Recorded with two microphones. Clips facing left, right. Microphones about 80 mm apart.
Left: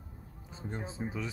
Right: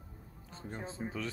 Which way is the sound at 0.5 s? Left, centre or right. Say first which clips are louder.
Left 2 dB; centre.